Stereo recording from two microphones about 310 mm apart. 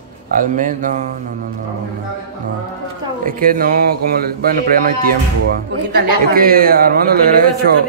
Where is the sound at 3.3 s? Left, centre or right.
Right.